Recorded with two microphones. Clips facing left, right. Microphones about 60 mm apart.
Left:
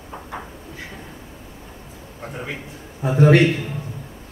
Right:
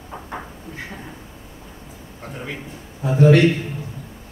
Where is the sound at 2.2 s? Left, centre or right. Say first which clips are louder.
Left 1 dB; centre.